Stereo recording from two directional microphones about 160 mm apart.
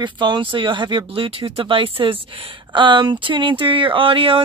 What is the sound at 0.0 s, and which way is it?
Speech, 30° right (ahead or behind).